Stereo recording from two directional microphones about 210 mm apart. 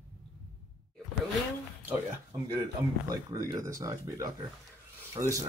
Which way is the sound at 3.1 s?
15° right (ahead or behind).